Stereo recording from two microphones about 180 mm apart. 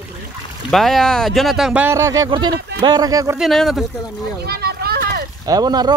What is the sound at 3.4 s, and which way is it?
Speech, centre (ahead or behind).